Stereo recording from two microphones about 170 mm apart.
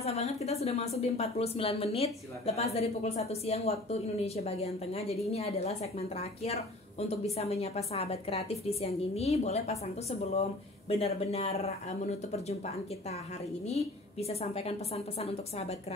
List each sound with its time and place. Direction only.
0.0 s a woman's voice: 40° left (ahead or behind)